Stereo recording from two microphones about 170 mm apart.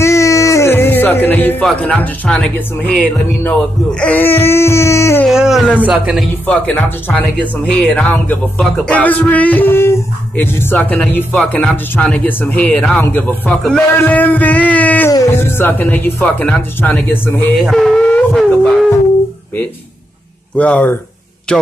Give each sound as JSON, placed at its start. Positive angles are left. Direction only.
{"t": 0.0, "sound": "music", "side_deg": 15}
{"t": 1.2, "sound": "speech", "side_deg": 10}
{"t": 5.2, "sound": "speech", "side_deg": 0}
{"t": 6.4, "sound": "speech", "side_deg": 10}
{"t": 17.6, "sound": "speech", "side_deg": 0}
{"t": 20.5, "sound": "speech", "side_deg": 5}